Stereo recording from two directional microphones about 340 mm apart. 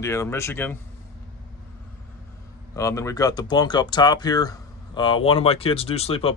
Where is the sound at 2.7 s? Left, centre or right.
Centre.